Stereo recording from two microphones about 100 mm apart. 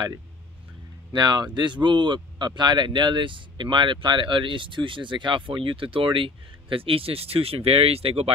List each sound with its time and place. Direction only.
1.1 s speech: 45° right (ahead or behind); by 8.3 s 80° right